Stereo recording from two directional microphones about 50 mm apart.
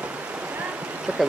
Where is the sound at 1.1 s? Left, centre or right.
Right.